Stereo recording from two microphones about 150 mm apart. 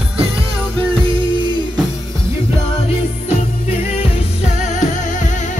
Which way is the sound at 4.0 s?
50° left (ahead or behind).